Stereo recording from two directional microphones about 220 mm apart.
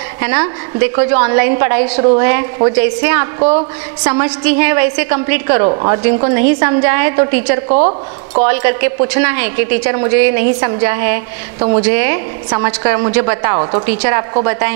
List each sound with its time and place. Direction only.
0.2 s a woman's voice: 15° right (ahead or behind)
2.0 s a woman's voice: 30° right (ahead or behind)
2.2 s a woman's voice: 15° right (ahead or behind)
3.3 s a woman's voice: 30° right (ahead or behind)
4.1 s a woman's voice: 15° right (ahead or behind)
5.7 s a woman's voice: 25° right (ahead or behind)
6.1 s a woman's voice: 15° right (ahead or behind)
7.6 s a woman's voice: 30° right (ahead or behind)
8.5 s a woman's voice: 15° right (ahead or behind)